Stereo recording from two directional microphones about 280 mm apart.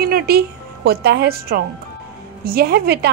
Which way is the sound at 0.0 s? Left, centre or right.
Right.